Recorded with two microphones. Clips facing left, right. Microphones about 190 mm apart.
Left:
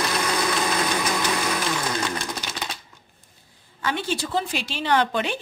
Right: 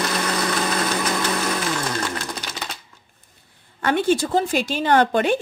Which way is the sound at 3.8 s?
55° right (ahead or behind).